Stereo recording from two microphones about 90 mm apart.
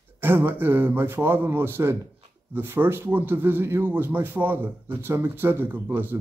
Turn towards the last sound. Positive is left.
turn(degrees=-25)  # may be behind; listen again after turning